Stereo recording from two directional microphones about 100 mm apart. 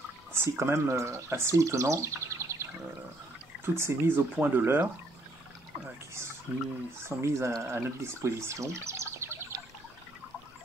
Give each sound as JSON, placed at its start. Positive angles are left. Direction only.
{"t": 0.3, "sound": "speech", "side_deg": -25}
{"t": 6.5, "sound": "speech", "side_deg": -15}